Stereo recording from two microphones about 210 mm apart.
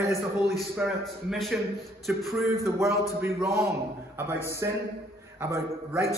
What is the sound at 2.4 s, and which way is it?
A man's voice, 15° right (ahead or behind).